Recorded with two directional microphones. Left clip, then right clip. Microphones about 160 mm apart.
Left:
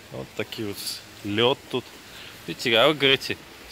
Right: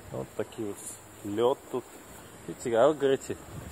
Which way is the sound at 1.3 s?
10° left (ahead or behind).